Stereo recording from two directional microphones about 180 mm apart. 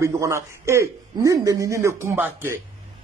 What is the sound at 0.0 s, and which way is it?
Speech, 15° right (ahead or behind).